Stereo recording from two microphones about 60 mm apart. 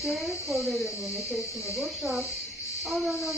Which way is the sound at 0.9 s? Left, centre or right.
Left.